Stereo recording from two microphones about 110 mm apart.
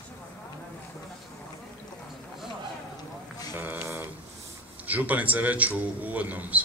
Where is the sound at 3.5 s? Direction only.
20° right (ahead or behind).